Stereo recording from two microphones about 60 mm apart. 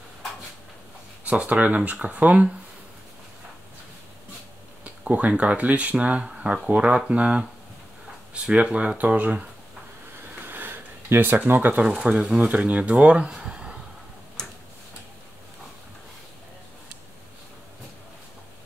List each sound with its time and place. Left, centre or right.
1.2 s speech: right
4.8 s speech: right
10.4 s a sound: right
11.3 s speech: right
11.7 s speech: centre
13.5 s a sound: centre